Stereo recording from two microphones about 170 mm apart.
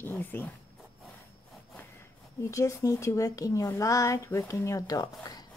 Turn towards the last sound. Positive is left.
turn(degrees=20)  # may be behind; listen again after turning